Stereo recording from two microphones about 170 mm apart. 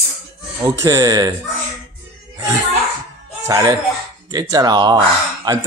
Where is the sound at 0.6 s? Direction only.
20° right (ahead or behind).